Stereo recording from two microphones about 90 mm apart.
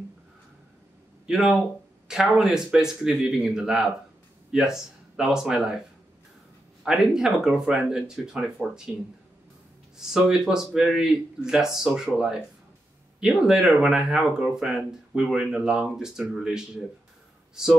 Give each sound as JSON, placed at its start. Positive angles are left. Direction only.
{"t": 1.2, "sound": "speech", "side_deg": -5}
{"t": 6.8, "sound": "speech", "side_deg": -5}
{"t": 8.9, "sound": "speech", "side_deg": -20}
{"t": 9.9, "sound": "speech", "side_deg": -5}